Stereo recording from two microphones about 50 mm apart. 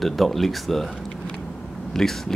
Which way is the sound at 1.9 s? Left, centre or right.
Centre.